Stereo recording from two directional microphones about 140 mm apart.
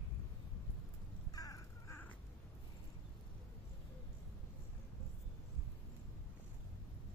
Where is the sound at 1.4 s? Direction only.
25° left (ahead or behind).